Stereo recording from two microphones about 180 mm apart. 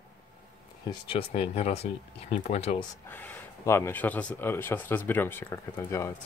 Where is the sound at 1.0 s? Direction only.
30° left (ahead or behind).